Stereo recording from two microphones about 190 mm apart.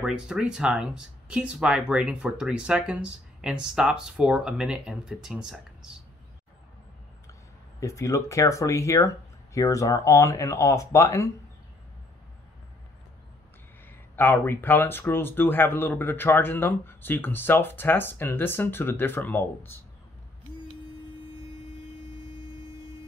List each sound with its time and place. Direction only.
0.0 s speech: 5° right (ahead or behind)
7.8 s speech: 15° left (ahead or behind)
13.8 s speech: 10° left (ahead or behind)